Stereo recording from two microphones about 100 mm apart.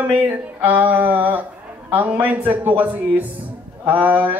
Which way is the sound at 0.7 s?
15° right (ahead or behind).